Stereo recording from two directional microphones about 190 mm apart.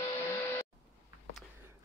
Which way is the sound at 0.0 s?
10° left (ahead or behind).